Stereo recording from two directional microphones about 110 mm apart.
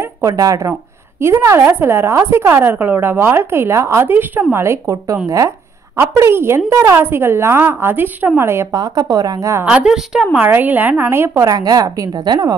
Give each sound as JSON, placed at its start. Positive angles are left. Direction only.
{"t": 0.0, "sound": "a woman's voice", "side_deg": -30}
{"t": 8.7, "sound": "speech", "side_deg": -35}
{"t": 9.7, "sound": "a woman's voice", "side_deg": -5}
{"t": 10.3, "sound": "a woman's voice", "side_deg": -15}